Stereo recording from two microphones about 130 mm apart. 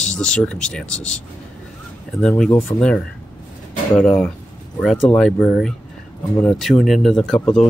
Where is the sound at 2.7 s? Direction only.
35° left (ahead or behind).